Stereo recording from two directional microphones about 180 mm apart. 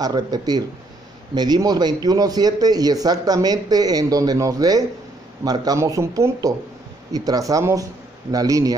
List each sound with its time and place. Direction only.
0.0 s a man's voice: 20° right (ahead or behind)